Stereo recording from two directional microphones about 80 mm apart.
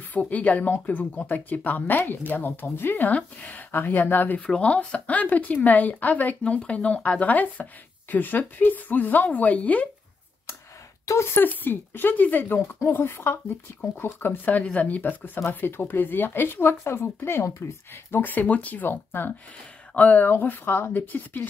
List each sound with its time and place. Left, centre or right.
0.1 s speech: centre
4.4 s speech: centre
11.1 s speech: left
18.2 s speech: left